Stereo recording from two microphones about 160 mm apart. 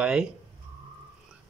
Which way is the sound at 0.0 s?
5° right (ahead or behind).